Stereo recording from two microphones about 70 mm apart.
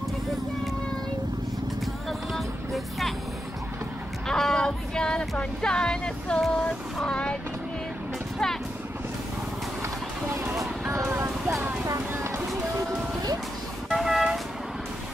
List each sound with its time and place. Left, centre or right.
2.0 s music: centre
4.3 s female singing: centre
5.4 s speech: centre
6.4 s a sound: centre
10.6 s music: right
13.9 s vehicle: centre